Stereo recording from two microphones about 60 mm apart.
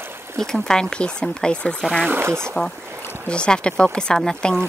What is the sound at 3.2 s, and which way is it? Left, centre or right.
Speech, centre.